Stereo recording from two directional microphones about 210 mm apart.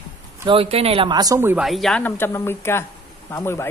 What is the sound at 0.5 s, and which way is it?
Speech, 25° right (ahead or behind).